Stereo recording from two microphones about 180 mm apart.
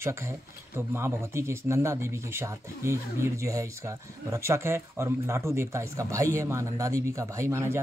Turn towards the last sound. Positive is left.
turn(degrees=-15)  # may be behind; listen again after turning